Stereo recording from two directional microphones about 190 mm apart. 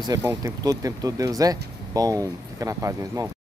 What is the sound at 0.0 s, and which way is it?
Speech, 15° right (ahead or behind).